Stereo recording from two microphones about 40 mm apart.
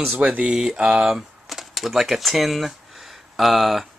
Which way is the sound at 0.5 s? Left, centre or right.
Centre.